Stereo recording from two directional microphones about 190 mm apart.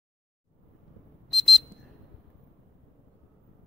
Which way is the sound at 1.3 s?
Centre (ahead or behind).